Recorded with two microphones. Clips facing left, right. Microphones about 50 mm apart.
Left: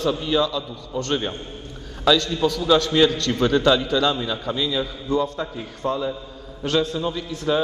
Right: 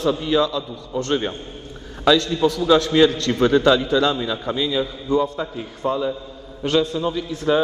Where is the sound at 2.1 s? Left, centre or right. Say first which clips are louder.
Right 2 dB; right.